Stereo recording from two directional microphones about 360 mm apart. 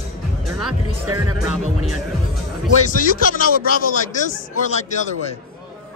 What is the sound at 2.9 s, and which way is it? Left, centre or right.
Speech, left.